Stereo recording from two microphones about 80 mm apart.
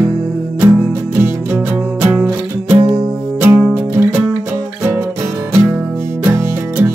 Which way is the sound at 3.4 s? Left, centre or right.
Right.